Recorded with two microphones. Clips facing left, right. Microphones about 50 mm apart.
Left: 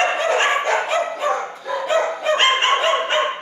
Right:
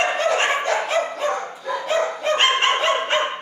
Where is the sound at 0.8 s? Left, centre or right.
Centre.